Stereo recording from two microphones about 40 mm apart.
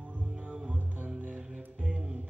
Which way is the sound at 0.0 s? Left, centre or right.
Right.